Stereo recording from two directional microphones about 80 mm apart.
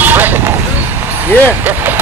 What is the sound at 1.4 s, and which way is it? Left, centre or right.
Speech, right.